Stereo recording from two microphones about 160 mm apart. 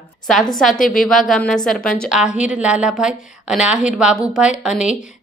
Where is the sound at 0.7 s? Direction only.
60° left (ahead or behind).